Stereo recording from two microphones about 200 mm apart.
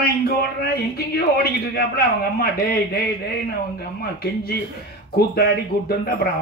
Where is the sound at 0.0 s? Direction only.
50° left (ahead or behind).